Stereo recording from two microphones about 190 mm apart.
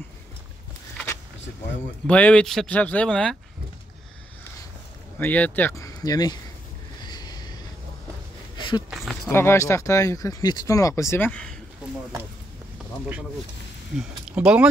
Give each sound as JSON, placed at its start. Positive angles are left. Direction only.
{"t": 2.0, "sound": "speech", "side_deg": 5}
{"t": 5.2, "sound": "speech", "side_deg": 10}
{"t": 7.1, "sound": "a sound", "side_deg": 20}
{"t": 8.9, "sound": "speech", "side_deg": 0}
{"t": 9.3, "sound": "speech", "side_deg": 15}
{"t": 13.9, "sound": "speech", "side_deg": -5}